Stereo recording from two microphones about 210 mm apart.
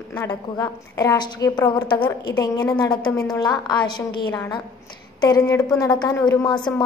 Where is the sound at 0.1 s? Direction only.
15° left (ahead or behind).